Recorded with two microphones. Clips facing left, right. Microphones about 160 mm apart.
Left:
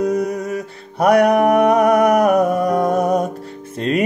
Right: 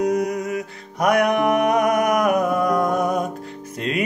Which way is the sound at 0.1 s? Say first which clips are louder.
Left 2 dB; 30° left (ahead or behind).